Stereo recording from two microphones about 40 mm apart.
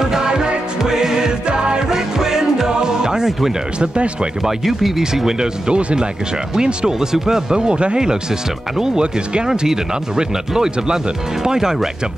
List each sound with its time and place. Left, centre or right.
0.0 s music: centre
3.8 s speech: right
4.5 s speech: centre
5.7 s speech: right